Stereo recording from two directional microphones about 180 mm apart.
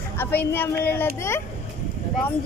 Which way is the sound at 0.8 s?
10° left (ahead or behind).